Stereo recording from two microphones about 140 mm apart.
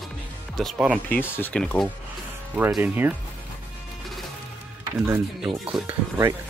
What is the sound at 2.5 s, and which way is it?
Speech, 10° right (ahead or behind).